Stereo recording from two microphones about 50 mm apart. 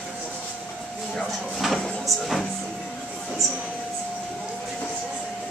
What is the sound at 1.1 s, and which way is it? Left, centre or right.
Speech, centre.